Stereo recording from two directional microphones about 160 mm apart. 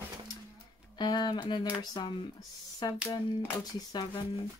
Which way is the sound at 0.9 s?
25° left (ahead or behind).